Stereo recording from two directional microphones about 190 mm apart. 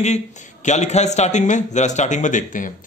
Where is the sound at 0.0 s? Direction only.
40° left (ahead or behind).